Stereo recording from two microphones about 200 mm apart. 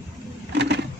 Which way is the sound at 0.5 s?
60° right (ahead or behind).